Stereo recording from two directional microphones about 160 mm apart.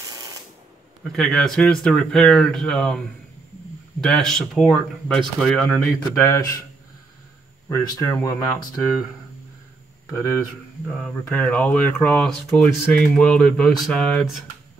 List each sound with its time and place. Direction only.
1.1 s speech: 5° left (ahead or behind)
4.0 s speech: 5° left (ahead or behind)
6.0 s speech: 20° left (ahead or behind)
7.7 s speech: 20° left (ahead or behind)
10.9 s speech: 5° left (ahead or behind)